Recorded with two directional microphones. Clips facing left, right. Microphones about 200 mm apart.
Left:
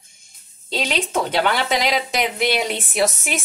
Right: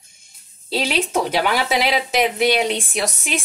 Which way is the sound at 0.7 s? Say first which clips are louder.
Right 2 dB; 5° right (ahead or behind).